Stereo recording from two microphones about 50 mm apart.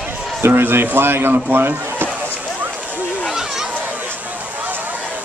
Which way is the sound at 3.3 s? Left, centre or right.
Centre.